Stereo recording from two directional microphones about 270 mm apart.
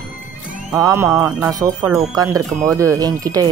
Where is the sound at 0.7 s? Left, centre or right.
Centre.